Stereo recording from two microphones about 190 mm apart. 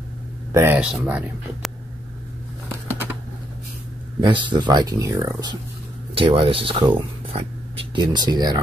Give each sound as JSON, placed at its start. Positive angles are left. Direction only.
{"t": 0.5, "sound": "speech", "side_deg": -10}
{"t": 4.2, "sound": "speech", "side_deg": -25}